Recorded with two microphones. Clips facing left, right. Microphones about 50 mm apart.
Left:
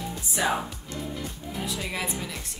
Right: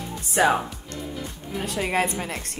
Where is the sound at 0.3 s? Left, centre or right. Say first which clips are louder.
Right 7 dB; right.